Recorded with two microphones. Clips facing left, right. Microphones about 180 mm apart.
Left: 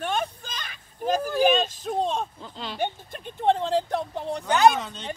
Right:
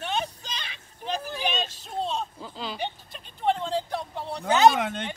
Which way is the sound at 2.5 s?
Centre (ahead or behind).